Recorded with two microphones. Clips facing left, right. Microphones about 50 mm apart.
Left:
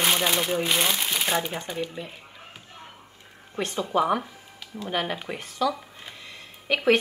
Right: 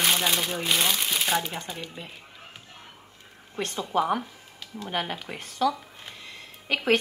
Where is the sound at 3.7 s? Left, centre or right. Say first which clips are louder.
Left 2 dB; left.